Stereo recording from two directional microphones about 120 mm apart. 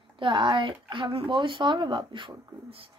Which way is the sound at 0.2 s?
40° right (ahead or behind).